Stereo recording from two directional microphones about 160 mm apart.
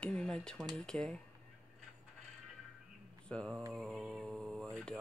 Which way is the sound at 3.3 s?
5° left (ahead or behind).